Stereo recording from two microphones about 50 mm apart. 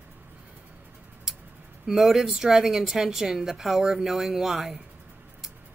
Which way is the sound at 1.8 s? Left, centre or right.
Centre.